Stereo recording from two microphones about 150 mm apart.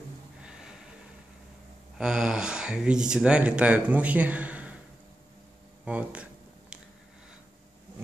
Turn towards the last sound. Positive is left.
turn(degrees=-10)  # may be behind; listen again after turning